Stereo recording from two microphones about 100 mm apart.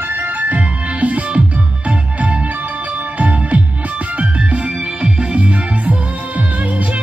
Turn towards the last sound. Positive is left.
turn(degrees=-15)  # may be behind; listen again after turning